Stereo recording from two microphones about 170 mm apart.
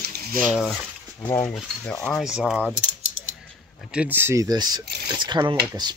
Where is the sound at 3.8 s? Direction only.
5° right (ahead or behind); by 5.9 s 25° right (ahead or behind).